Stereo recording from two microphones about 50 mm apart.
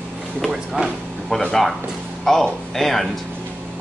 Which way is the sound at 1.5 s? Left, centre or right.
Centre.